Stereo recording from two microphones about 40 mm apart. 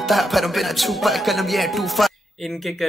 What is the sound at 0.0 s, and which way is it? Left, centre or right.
Speech, centre.